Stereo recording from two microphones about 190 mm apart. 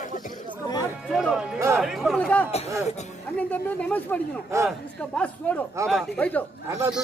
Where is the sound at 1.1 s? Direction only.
Centre (ahead or behind).